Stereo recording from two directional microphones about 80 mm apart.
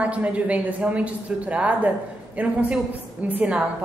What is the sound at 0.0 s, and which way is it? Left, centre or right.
A woman's voice, centre.